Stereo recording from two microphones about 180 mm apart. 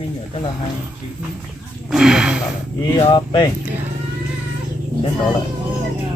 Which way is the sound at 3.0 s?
25° left (ahead or behind).